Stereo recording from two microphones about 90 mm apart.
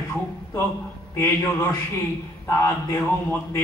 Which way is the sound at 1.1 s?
30° left (ahead or behind).